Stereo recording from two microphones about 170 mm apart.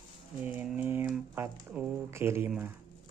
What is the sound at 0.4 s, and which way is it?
Speech, 10° right (ahead or behind).